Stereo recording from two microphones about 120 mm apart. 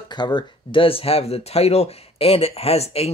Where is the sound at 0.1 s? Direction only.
40° left (ahead or behind).